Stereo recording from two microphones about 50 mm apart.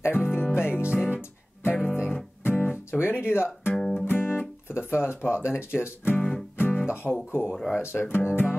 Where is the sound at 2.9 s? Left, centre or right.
Left.